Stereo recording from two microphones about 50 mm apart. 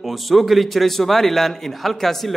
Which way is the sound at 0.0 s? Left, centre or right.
Centre.